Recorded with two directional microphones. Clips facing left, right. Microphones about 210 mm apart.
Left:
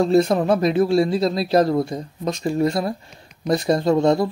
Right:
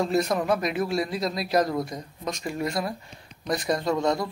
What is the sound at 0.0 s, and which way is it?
Speech, 30° left (ahead or behind).